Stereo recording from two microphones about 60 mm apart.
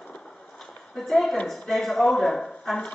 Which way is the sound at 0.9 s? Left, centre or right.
Centre.